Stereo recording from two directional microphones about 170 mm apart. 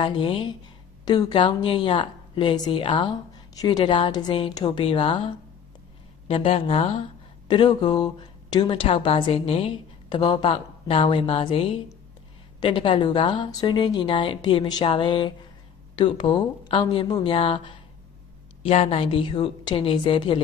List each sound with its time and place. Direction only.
0.0 s a woman's voice: 30° left (ahead or behind)